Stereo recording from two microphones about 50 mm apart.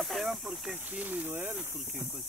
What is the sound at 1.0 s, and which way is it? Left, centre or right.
Speech, right.